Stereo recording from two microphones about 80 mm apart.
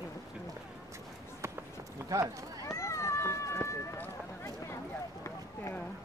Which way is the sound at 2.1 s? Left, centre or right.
Right.